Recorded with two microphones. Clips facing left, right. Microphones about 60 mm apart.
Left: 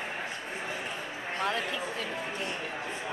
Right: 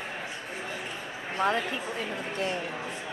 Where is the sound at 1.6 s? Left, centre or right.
Right.